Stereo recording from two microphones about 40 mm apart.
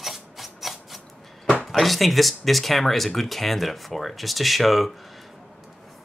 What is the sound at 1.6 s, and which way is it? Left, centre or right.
Speech, centre.